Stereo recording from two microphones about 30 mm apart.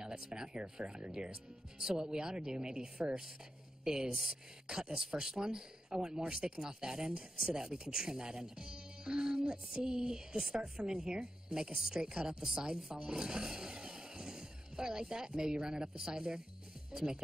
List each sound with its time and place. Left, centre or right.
0.0 s speech: right